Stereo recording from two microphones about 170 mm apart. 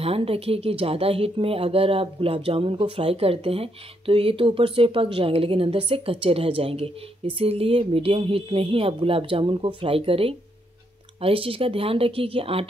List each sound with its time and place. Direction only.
0.0 s speech: 35° right (ahead or behind)